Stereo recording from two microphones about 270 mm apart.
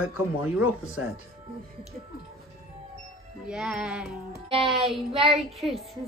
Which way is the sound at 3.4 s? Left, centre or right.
Centre.